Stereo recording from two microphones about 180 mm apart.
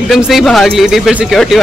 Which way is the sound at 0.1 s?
Centre (ahead or behind).